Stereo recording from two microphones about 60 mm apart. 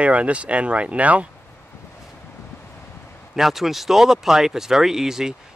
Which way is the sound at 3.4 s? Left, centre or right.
Centre.